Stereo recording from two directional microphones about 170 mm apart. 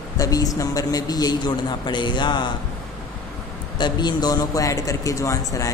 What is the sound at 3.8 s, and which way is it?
A man's voice, 25° left (ahead or behind).